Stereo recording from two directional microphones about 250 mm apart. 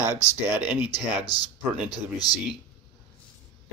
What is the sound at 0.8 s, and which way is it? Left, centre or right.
Speech, centre.